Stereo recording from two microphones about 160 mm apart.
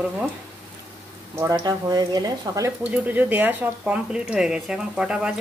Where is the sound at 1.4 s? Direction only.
25° right (ahead or behind).